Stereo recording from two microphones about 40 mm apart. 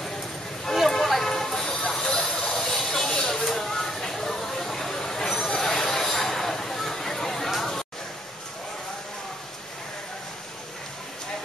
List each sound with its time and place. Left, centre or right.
0.7 s vehicle: centre
1.3 s train: centre